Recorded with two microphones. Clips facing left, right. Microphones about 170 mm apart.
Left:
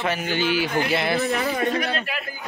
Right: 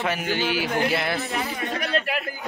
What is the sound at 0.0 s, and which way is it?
Speech, 5° right (ahead or behind).